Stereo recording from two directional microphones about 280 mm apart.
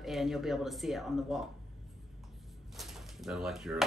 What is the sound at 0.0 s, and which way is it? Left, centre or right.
Speech, centre.